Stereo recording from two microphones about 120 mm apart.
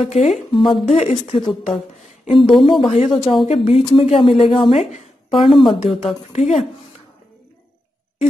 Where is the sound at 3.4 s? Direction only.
55° left (ahead or behind).